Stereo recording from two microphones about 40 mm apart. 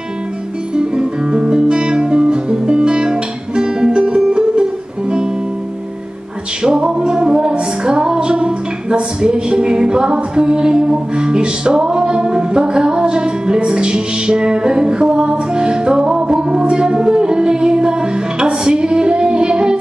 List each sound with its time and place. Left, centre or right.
0.7 s guitar: right
4.3 s music: right
6.6 s music: centre